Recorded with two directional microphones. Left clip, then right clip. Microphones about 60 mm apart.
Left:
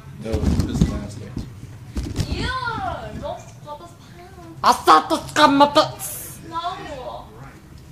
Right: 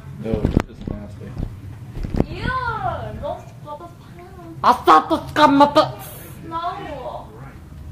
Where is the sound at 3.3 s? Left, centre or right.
Right.